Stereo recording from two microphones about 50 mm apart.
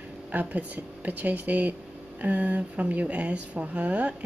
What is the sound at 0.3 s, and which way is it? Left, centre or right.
Speech, right.